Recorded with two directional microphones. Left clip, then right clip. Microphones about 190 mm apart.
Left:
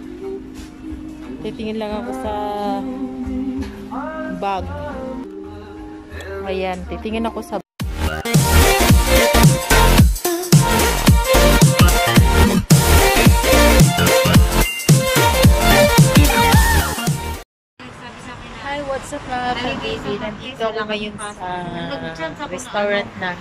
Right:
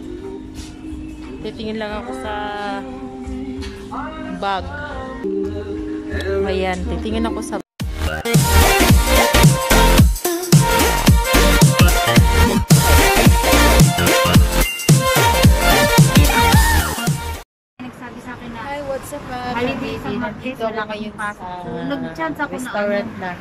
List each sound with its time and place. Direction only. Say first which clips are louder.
1.4 s speech: even; 10° left (ahead or behind)
4.4 s music: right 1 dB; 10° left (ahead or behind)
6.4 s speech: right 3 dB; 5° left (ahead or behind)
8.0 s music: right 1 dB; centre (ahead or behind)
20.6 s speech: left 2 dB; centre (ahead or behind)